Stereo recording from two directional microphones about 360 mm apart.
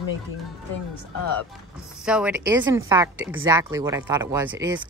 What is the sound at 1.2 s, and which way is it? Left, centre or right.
Speech, left.